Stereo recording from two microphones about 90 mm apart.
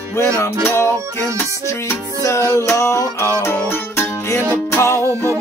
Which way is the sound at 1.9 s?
35° left (ahead or behind).